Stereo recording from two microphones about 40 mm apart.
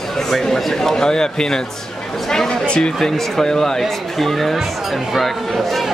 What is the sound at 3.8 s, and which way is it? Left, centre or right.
A man's voice, centre.